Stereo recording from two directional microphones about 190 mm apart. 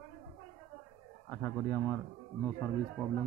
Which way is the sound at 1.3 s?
15° left (ahead or behind).